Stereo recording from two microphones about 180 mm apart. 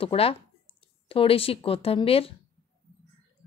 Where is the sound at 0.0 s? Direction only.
30° left (ahead or behind).